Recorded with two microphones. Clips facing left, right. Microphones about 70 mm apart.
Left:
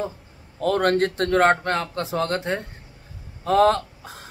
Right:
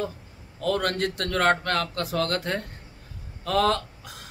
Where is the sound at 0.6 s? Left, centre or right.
Left.